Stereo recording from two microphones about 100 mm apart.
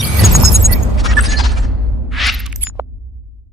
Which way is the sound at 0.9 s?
Centre (ahead or behind).